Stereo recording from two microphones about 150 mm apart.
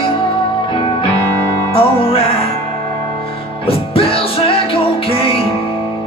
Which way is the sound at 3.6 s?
40° left (ahead or behind).